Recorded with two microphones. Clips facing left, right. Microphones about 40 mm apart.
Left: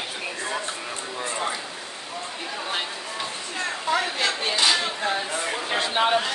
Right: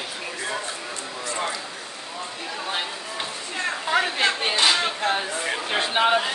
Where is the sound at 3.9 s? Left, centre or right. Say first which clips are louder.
Right 2 dB; right.